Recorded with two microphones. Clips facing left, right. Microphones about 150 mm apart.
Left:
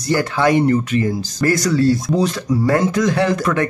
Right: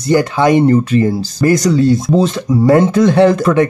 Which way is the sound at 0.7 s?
35° right (ahead or behind).